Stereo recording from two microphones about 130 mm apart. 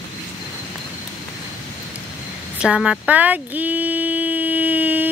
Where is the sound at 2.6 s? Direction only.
5° right (ahead or behind).